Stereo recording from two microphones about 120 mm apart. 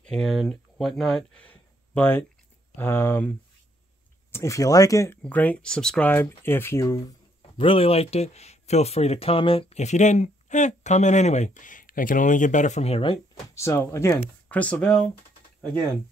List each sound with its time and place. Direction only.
0.0 s speech: 5° left (ahead or behind); by 5.1 s 30° left (ahead or behind)
5.1 s speech: 15° left (ahead or behind)
7.5 s speech: 50° left (ahead or behind)
9.8 s speech: 75° left (ahead or behind)
13.0 s speech: 40° left (ahead or behind)
13.6 s speech: 25° left (ahead or behind)
14.5 s speech: 10° left (ahead or behind)